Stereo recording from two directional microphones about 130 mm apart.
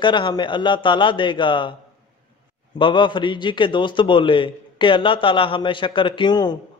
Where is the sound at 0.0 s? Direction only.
35° left (ahead or behind).